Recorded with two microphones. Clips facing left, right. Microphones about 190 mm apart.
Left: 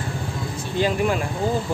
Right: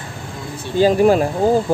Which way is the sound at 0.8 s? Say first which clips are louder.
Right 9 dB; 40° right (ahead or behind).